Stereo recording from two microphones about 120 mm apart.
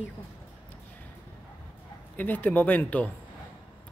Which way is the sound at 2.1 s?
15° left (ahead or behind).